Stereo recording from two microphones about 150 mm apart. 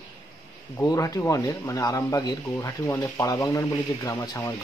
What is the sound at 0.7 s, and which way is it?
A man's voice, 20° left (ahead or behind).